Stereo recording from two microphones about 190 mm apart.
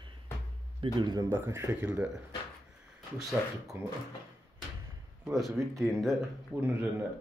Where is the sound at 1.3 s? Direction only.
10° right (ahead or behind).